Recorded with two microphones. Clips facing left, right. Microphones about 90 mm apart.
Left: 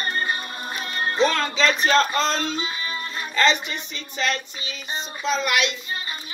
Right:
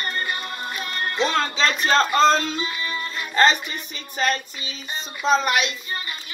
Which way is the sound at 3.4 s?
40° right (ahead or behind).